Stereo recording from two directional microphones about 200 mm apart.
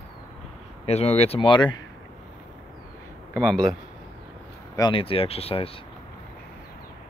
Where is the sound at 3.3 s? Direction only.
5° left (ahead or behind).